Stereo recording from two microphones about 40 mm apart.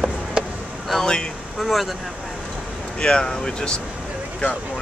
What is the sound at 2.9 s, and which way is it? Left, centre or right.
Speech, left.